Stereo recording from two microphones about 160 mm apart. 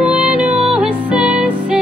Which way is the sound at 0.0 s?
10° right (ahead or behind).